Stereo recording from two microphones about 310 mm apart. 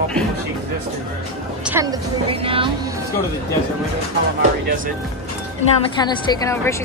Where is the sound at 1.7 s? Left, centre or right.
Centre.